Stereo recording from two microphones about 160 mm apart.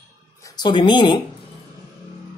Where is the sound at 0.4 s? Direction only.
25° left (ahead or behind).